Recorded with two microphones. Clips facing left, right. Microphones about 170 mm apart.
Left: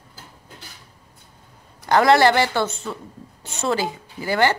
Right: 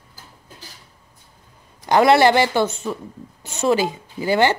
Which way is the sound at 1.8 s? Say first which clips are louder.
Right 1 dB; 20° right (ahead or behind).